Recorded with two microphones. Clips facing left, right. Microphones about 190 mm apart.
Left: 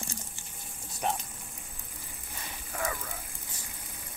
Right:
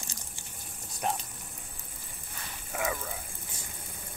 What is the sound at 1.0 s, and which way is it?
Speech, centre (ahead or behind).